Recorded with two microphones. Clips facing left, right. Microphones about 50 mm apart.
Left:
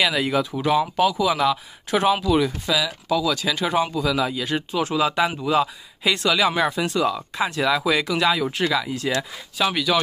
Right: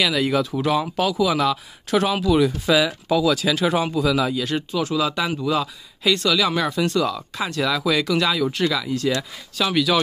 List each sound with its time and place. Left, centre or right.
0.0 s speech: centre
2.6 s speech: centre
9.6 s speech: centre